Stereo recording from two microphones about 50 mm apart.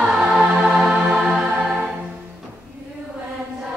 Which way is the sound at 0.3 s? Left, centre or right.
Centre.